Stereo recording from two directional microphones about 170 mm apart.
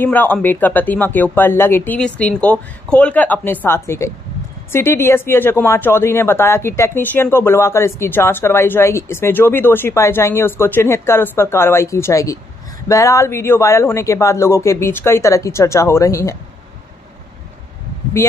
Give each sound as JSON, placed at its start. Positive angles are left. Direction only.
{"t": 0.0, "sound": "speech", "side_deg": 10}